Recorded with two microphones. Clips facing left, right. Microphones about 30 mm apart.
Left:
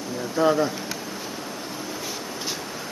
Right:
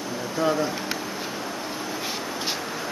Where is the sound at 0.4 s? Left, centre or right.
Centre.